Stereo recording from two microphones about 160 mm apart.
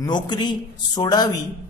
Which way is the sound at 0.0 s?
25° left (ahead or behind).